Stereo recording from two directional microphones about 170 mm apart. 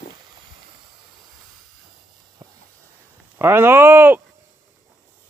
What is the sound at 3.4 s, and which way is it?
Speech, 15° right (ahead or behind).